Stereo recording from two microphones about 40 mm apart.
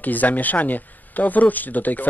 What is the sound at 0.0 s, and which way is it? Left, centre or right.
Speech, left.